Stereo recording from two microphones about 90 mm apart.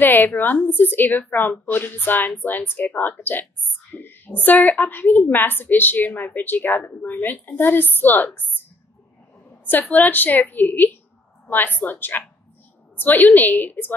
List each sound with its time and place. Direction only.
0.0 s a woman's voice: 20° left (ahead or behind)
9.7 s a woman's voice: 20° left (ahead or behind)